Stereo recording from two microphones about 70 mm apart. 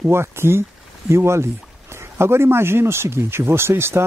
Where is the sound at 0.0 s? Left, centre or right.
Right.